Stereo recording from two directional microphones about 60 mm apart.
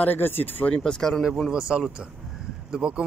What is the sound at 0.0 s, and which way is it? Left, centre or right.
Speech, left.